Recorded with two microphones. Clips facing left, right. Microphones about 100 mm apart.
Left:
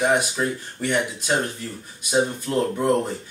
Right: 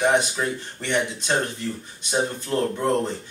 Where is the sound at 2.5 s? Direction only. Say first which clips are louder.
Even; 5° left (ahead or behind).